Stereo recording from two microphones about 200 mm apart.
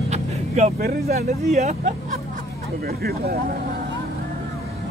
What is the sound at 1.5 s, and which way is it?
Speech, 35° right (ahead or behind).